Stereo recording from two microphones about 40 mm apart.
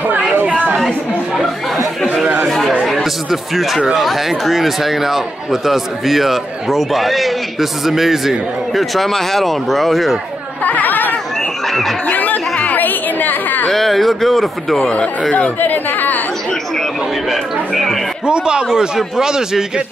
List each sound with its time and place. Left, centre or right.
0.7 s chatter: centre
2.8 s speech: centre
10.6 s chatter: left
13.7 s speech: centre
15.6 s chatter: left
17.3 s a sound: centre
18.2 s speech: right